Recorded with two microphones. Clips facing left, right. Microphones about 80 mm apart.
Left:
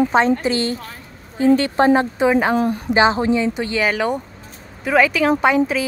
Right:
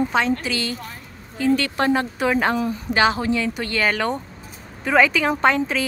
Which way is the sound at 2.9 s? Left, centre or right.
Left.